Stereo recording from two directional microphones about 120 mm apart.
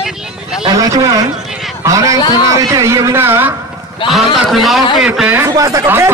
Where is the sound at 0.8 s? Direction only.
30° right (ahead or behind).